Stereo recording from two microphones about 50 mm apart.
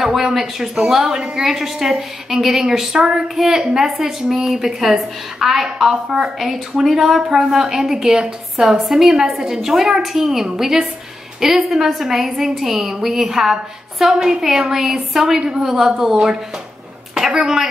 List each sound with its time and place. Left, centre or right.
0.0 s a woman's voice: centre
3.3 s a woman's voice: centre
17.4 s a woman's voice: centre